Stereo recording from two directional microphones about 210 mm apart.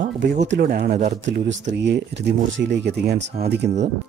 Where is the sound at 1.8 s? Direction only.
55° right (ahead or behind).